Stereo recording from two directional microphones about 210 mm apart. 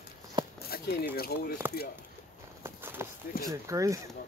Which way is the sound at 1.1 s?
45° left (ahead or behind).